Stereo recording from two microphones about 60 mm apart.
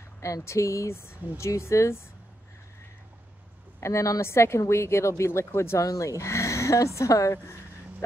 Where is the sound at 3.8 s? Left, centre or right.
Left.